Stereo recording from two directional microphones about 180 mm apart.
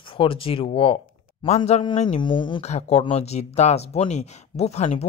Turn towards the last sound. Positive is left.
turn(degrees=40)  # may be behind; listen again after turning